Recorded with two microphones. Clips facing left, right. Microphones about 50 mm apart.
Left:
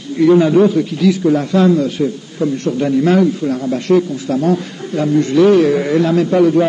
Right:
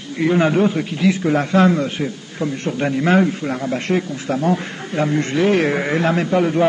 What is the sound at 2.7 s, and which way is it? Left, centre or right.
A man's voice, right.